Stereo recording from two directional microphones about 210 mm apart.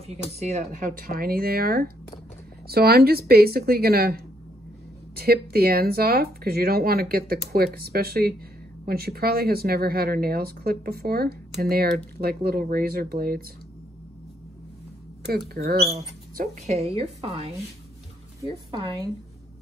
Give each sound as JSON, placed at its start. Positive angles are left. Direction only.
{"t": 0.0, "sound": "speech", "side_deg": -30}
{"t": 15.2, "sound": "speech", "side_deg": -50}
{"t": 16.3, "sound": "a woman's voice", "side_deg": -30}